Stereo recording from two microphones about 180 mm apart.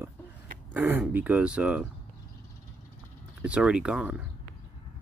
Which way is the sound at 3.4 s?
5° right (ahead or behind).